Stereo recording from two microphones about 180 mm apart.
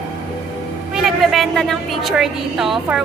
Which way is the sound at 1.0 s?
Centre (ahead or behind).